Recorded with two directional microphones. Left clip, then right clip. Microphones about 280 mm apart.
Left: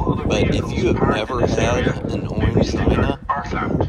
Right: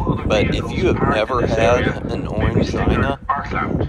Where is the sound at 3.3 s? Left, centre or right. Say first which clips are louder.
Right 1 dB; left.